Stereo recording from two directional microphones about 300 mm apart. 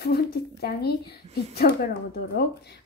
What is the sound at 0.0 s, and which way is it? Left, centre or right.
A woman's voice, left.